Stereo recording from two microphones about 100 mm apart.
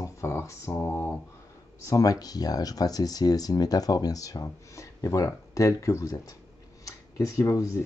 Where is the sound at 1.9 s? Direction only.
35° left (ahead or behind).